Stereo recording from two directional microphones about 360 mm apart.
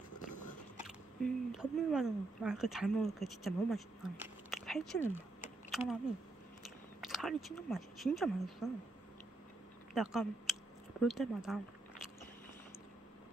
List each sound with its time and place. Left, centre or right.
0.8 s speech: centre
7.0 s speech: centre
9.9 s speech: centre